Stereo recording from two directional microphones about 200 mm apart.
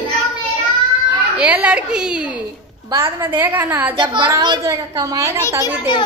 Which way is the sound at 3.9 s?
25° right (ahead or behind).